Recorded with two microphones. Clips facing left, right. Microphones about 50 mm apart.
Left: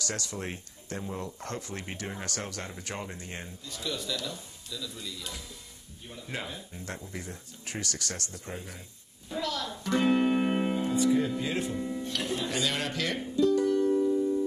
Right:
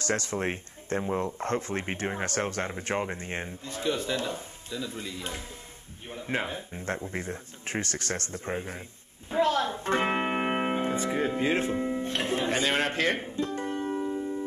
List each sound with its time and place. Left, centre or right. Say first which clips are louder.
0.0 s speech: right 7 dB; right
9.3 s music: right 8 dB; right